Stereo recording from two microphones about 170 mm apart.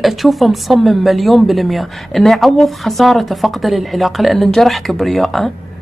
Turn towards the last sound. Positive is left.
turn(degrees=0)  # may be behind; listen again after turning